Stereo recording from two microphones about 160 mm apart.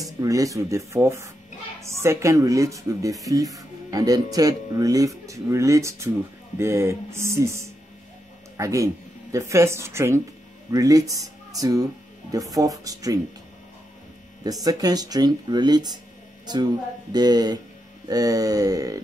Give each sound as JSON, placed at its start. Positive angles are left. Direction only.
{"t": 0.0, "sound": "speech", "side_deg": -20}
{"t": 14.4, "sound": "speech", "side_deg": -25}
{"t": 17.1, "sound": "speech", "side_deg": -25}